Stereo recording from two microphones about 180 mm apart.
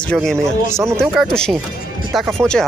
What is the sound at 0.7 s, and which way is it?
Speech, 15° right (ahead or behind).